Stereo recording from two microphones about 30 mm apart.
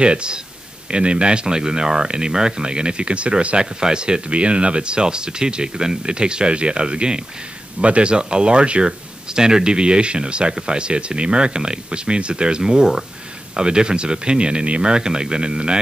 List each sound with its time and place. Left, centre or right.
0.0 s speech: right
9.3 s speech: right